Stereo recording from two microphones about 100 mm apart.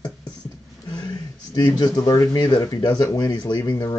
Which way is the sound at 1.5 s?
40° left (ahead or behind).